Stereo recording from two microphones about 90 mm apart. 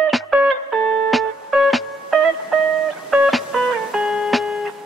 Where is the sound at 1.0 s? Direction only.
5° right (ahead or behind).